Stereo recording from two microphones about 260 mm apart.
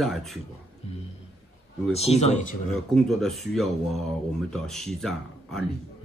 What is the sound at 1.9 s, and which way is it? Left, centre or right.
Speech, left.